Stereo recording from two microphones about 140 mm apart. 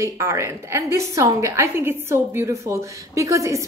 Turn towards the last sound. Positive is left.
turn(degrees=-20)  # may be behind; listen again after turning